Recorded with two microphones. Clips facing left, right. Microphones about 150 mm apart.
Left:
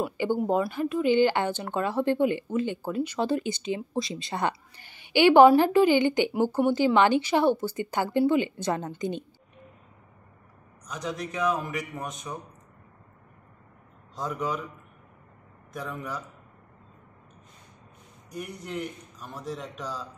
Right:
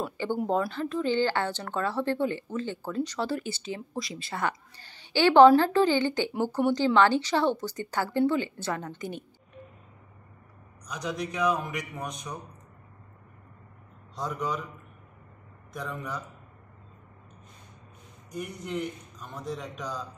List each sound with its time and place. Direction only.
0.0 s speech: 10° left (ahead or behind)
10.9 s a man's voice: 30° left (ahead or behind)
11.4 s a man's voice: 5° left (ahead or behind)
14.1 s a man's voice: 5° left (ahead or behind)
15.7 s a man's voice: 5° left (ahead or behind)
18.3 s a man's voice: centre (ahead or behind)